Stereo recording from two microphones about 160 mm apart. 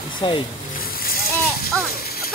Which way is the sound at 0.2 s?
30° left (ahead or behind).